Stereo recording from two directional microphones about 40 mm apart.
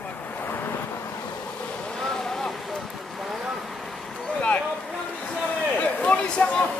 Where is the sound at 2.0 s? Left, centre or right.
Centre.